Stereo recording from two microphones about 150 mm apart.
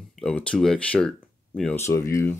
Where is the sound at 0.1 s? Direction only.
5° left (ahead or behind).